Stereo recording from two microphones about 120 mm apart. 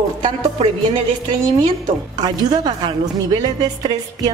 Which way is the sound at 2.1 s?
35° right (ahead or behind).